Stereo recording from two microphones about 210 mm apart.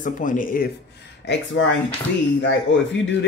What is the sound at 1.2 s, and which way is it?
Speech, 55° left (ahead or behind).